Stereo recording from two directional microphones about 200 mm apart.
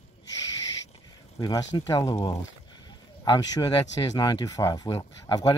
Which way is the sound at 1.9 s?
20° left (ahead or behind).